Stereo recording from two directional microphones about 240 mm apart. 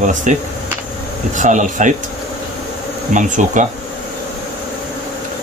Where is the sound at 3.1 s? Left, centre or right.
Right.